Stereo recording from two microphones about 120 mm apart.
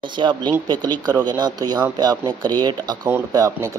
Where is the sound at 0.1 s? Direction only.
40° right (ahead or behind).